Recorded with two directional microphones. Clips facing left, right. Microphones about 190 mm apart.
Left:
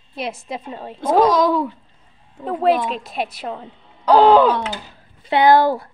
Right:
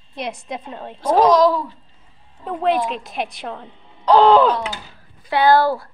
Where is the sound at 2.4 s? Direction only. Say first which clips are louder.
Left 2 dB; centre (ahead or behind).